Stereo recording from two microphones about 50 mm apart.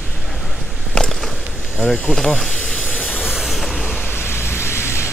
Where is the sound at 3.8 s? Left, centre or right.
Left.